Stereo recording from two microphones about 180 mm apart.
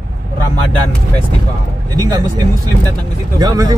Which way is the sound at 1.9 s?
20° right (ahead or behind).